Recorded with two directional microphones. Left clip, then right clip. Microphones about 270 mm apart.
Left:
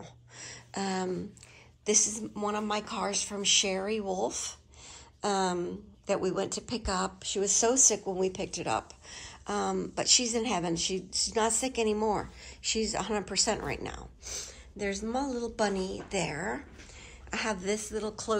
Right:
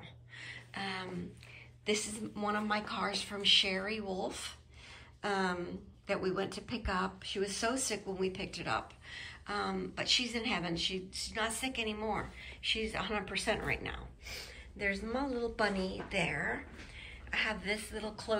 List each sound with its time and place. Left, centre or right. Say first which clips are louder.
0.7 s a woman's voice: left 7 dB; centre
17.9 s a woman's voice: left 5 dB; centre